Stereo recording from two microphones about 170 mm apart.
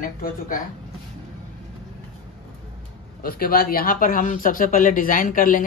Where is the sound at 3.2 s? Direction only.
60° left (ahead or behind).